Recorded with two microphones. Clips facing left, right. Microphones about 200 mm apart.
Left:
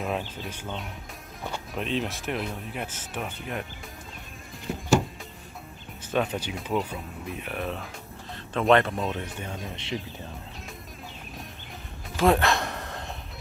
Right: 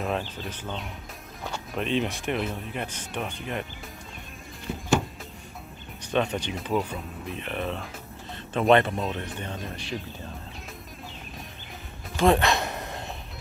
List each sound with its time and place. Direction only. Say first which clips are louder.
0.0 s speech: right 1 dB; 5° left (ahead or behind)
6.1 s speech: right 1 dB; 5° left (ahead or behind)
9.7 s speech: even; 25° left (ahead or behind)
12.2 s speech: right 1 dB; centre (ahead or behind)
12.7 s music: right 1 dB; 15° right (ahead or behind)